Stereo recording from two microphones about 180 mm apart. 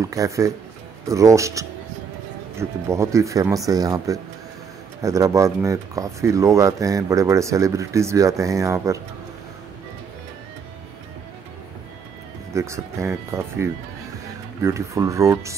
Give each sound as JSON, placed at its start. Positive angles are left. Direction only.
{"t": 0.0, "sound": "speech", "side_deg": -20}
{"t": 12.5, "sound": "speech", "side_deg": -15}